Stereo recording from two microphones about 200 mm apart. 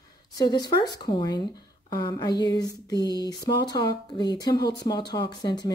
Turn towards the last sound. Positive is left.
turn(degrees=20)  # may be behind; listen again after turning